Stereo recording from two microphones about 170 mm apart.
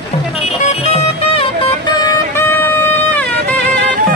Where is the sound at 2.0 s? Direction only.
20° left (ahead or behind).